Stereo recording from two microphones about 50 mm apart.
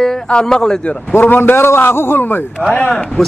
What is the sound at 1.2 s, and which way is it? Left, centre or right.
A man's voice, left.